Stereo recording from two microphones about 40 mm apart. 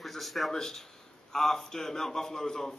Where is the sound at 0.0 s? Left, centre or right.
Centre.